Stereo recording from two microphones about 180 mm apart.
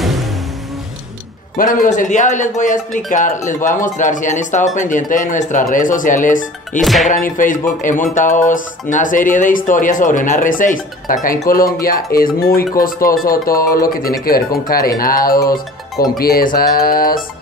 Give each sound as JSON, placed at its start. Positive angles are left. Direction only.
{"t": 1.6, "sound": "speech", "side_deg": 45}
{"t": 6.8, "sound": "music", "side_deg": 0}
{"t": 7.1, "sound": "speech", "side_deg": 50}